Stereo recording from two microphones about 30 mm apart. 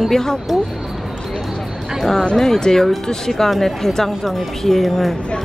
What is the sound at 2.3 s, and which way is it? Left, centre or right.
Speech, centre.